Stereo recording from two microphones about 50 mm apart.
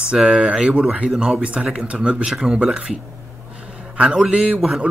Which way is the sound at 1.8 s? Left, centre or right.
Right.